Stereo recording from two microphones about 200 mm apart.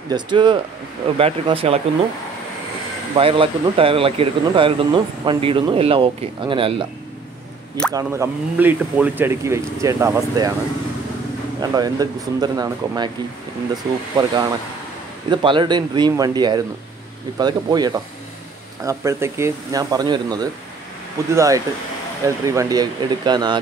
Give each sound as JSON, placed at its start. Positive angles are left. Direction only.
{"t": 0.1, "sound": "speech", "side_deg": -25}
{"t": 3.2, "sound": "speech", "side_deg": -25}
{"t": 7.9, "sound": "speech", "side_deg": -15}
{"t": 11.7, "sound": "speech", "side_deg": -20}
{"t": 14.1, "sound": "speech", "side_deg": -20}